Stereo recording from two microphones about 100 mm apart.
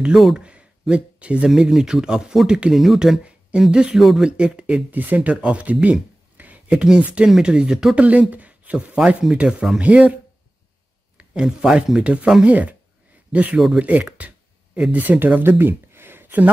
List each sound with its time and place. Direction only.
0.0 s speech: 5° right (ahead or behind)
11.1 s speech: 5° right (ahead or behind)
13.7 s a sound: 15° right (ahead or behind)
14.8 s speech: 15° right (ahead or behind)